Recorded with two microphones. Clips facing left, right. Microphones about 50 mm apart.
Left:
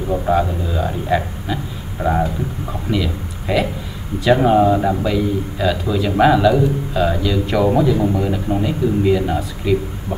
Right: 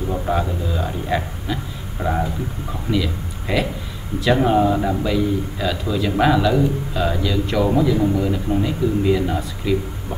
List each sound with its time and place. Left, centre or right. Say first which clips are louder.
0.1 s a man's voice: left 6 dB; centre